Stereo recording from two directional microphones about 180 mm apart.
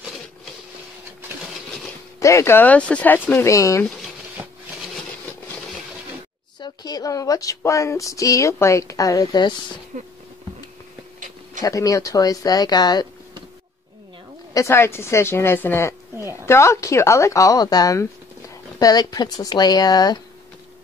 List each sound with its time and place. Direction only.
2.1 s a woman's voice: 15° left (ahead or behind)
4.4 s a sound: 10° right (ahead or behind)
6.6 s a woman's voice: 20° left (ahead or behind)
9.9 s speech: 45° right (ahead or behind)
11.6 s speech: 20° left (ahead or behind)
14.5 s a woman's voice: 15° left (ahead or behind)